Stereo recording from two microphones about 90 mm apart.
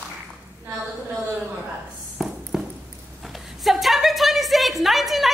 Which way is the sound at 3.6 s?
Centre (ahead or behind).